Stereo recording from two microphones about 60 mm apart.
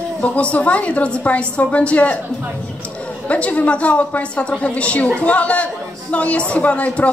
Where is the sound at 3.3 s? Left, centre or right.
Left.